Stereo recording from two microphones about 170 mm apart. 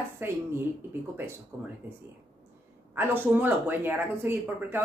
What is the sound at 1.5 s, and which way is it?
Speech, 15° right (ahead or behind).